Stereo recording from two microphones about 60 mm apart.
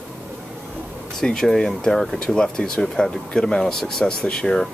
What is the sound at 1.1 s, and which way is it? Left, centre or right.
Speech, centre.